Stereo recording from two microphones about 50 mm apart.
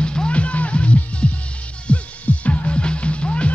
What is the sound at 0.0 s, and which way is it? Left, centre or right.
Music, centre.